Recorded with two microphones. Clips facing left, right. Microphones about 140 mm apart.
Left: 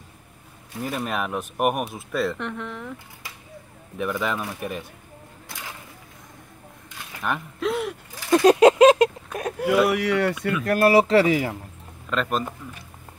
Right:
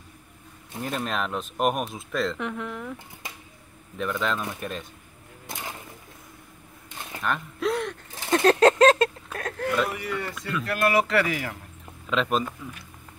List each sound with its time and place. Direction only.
0.7 s speech: 5° left (ahead or behind)
4.0 s speech: 10° left (ahead or behind)
7.2 s speech: 15° left (ahead or behind)
7.6 s gasp: 5° left (ahead or behind)
8.3 s a sound: 10° left (ahead or behind)
9.8 s speech: 90° left; by 10.5 s 70° left (ahead or behind)
10.6 s speech: 40° left (ahead or behind)
12.1 s speech: centre (ahead or behind)